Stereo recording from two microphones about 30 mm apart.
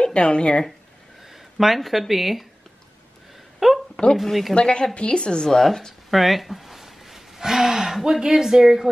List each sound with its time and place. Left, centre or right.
0.0 s speech: left
1.2 s a sound: centre
1.8 s speech: centre
3.5 s a woman's voice: centre
4.6 s a woman's voice: left
5.5 s speech: centre
6.0 s speech: centre